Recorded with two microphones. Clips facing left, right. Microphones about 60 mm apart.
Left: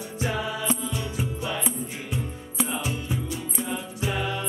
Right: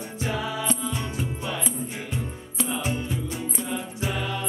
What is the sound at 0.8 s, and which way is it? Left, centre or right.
Music, right.